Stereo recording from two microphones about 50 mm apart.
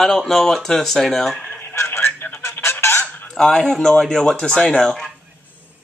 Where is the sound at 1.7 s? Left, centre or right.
Left.